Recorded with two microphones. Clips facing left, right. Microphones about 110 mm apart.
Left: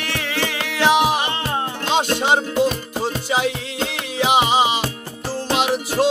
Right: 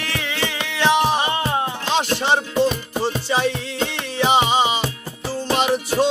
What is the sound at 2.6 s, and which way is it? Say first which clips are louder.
Music: even; 5° left (ahead or behind).